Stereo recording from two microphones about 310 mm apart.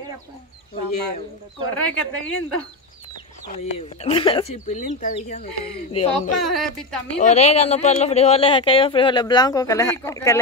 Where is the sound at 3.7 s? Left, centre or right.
Centre.